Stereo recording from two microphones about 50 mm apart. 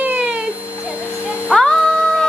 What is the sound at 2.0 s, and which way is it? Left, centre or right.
Music, centre.